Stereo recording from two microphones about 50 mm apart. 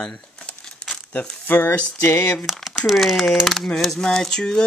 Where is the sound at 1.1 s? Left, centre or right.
Left.